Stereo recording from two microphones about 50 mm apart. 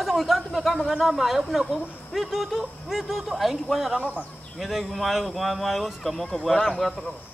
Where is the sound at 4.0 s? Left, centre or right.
Right.